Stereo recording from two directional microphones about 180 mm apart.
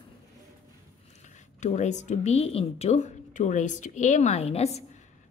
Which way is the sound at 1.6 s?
40° left (ahead or behind).